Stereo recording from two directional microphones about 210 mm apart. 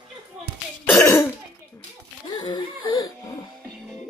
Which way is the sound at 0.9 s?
10° left (ahead or behind).